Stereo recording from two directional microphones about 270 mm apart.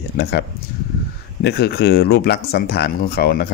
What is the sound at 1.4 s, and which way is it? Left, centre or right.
Speech, left.